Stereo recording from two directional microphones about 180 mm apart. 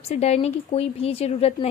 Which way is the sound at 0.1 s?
35° left (ahead or behind).